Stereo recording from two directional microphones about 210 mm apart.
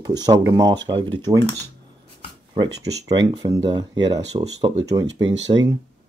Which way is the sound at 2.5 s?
20° right (ahead or behind).